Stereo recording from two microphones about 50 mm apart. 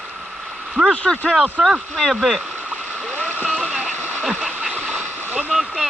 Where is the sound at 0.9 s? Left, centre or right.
Left.